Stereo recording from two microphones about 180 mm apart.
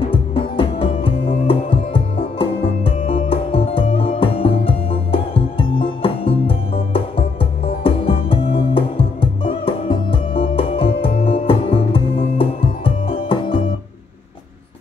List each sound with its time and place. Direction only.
0.1 s music: 30° left (ahead or behind)